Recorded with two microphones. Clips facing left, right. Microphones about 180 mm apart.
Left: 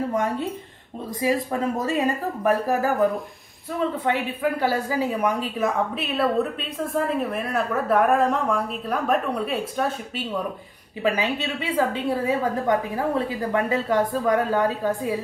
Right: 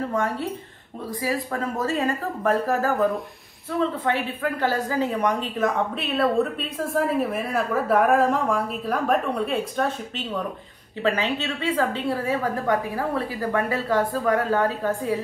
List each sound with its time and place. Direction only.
0.1 s a woman's voice: 15° left (ahead or behind)
4.0 s a woman's voice: 15° left (ahead or behind)